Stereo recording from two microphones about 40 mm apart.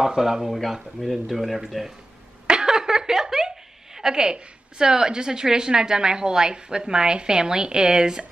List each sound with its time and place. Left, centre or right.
0.0 s speech: centre
0.5 s speech: centre
2.4 s speech: centre